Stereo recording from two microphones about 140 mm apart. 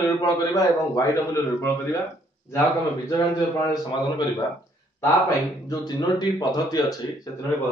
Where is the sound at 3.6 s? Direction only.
35° left (ahead or behind).